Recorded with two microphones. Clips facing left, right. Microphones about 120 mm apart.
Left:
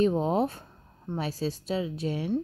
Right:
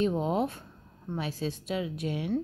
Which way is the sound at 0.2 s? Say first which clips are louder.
Left 2 dB; 35° left (ahead or behind).